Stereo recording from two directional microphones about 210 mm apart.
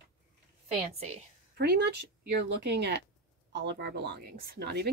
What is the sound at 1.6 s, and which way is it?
Speech, 50° right (ahead or behind).